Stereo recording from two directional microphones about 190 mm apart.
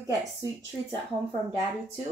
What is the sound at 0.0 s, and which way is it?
Speech, 15° right (ahead or behind).